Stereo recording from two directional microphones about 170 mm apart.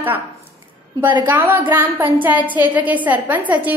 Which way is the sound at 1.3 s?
10° right (ahead or behind).